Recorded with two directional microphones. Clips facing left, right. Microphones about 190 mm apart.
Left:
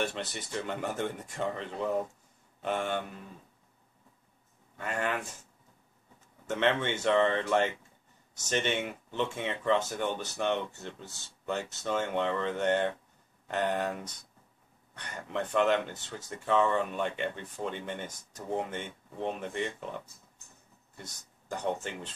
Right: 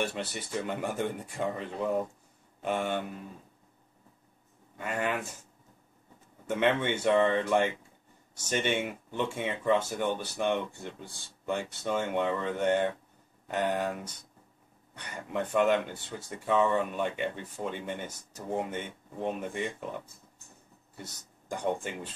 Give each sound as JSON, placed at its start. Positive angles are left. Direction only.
{"t": 0.0, "sound": "speech", "side_deg": -10}
{"t": 4.7, "sound": "speech", "side_deg": -5}
{"t": 6.4, "sound": "speech", "side_deg": -10}
{"t": 20.9, "sound": "speech", "side_deg": -10}